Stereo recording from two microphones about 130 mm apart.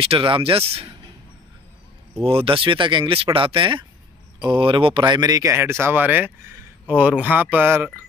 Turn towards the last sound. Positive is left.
turn(degrees=-15)  # may be behind; listen again after turning